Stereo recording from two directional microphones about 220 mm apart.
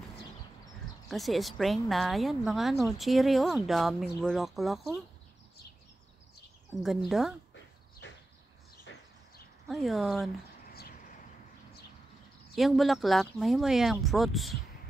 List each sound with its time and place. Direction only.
1.1 s speech: centre (ahead or behind)
6.8 s speech: centre (ahead or behind)
8.9 s a sound: 55° left (ahead or behind)
9.7 s speech: centre (ahead or behind)
10.7 s a sound: 45° left (ahead or behind)
12.5 s speech: centre (ahead or behind)